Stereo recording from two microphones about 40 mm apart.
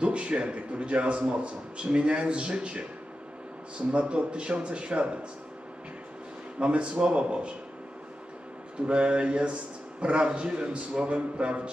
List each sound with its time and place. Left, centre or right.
0.0 s a man's voice: right
6.6 s a man's voice: right
8.7 s a man's voice: right